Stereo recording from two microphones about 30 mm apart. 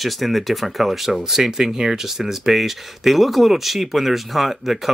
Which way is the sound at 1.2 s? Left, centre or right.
Centre.